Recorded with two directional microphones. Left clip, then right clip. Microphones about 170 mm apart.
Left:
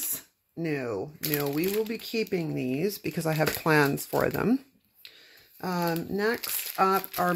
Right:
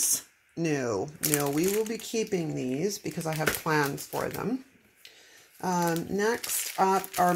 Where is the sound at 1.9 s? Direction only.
15° left (ahead or behind).